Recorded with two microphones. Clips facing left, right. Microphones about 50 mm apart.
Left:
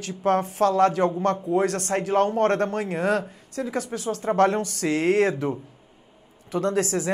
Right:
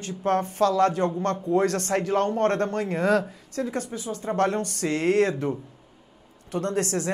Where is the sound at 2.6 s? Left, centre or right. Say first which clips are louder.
Even; centre.